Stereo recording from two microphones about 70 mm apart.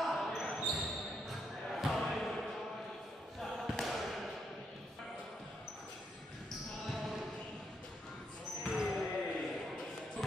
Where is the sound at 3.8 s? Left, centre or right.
Centre.